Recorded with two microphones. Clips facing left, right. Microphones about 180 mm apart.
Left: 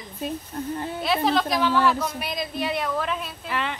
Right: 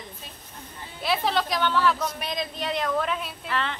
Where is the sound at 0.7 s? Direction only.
60° left (ahead or behind).